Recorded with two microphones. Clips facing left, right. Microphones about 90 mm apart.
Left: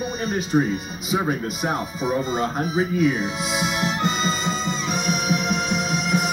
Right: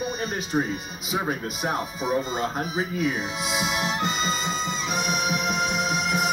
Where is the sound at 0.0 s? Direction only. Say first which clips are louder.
Left 3 dB; 20° right (ahead or behind).